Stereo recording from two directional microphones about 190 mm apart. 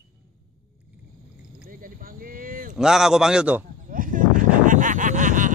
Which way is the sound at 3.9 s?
45° right (ahead or behind).